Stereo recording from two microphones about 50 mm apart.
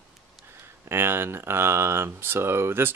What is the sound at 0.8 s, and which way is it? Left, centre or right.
Speech, right.